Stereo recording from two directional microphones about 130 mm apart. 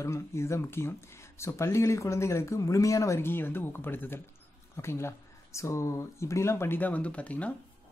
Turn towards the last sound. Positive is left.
turn(degrees=10)  # may be behind; listen again after turning